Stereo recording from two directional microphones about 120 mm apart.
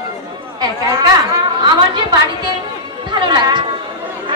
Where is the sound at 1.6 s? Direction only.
35° right (ahead or behind).